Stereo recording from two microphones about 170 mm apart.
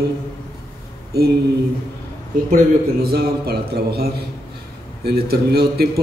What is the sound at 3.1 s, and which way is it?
A man's voice, 70° right (ahead or behind).